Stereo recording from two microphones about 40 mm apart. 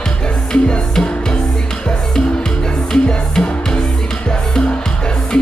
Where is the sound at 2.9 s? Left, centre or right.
Centre.